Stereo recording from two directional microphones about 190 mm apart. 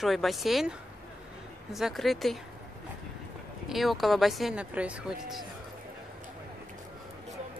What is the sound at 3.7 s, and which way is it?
Speech, centre (ahead or behind).